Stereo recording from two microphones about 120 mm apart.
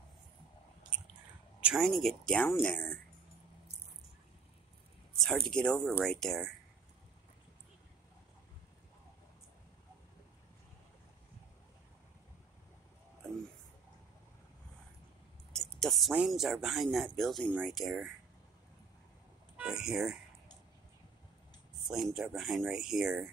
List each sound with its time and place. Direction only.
1.6 s speech: 5° right (ahead or behind); by 3.0 s 15° left (ahead or behind)
5.2 s speech: 5° left (ahead or behind)
15.5 s speech: 5° left (ahead or behind)
19.5 s speech: 5° right (ahead or behind)
21.8 s speech: centre (ahead or behind)